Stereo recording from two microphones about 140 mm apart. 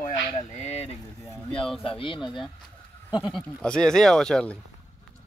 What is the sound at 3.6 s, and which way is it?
Speech, 5° left (ahead or behind).